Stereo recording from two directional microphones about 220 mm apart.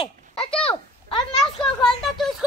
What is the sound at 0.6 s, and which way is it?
A child's voice, 25° left (ahead or behind).